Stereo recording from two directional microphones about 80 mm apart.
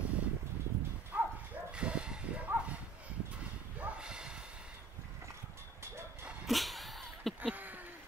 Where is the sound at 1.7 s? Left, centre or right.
Centre.